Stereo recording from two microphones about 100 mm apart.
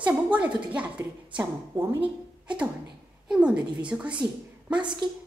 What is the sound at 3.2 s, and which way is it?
Speech, 10° right (ahead or behind).